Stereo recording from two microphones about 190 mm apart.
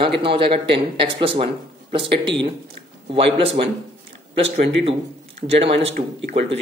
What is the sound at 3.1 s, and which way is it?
Speech, 30° right (ahead or behind).